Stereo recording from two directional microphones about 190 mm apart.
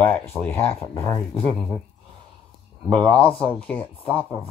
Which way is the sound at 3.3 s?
5° left (ahead or behind).